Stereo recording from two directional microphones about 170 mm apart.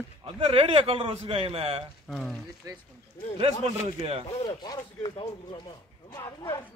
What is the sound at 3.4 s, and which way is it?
Speech, 35° right (ahead or behind).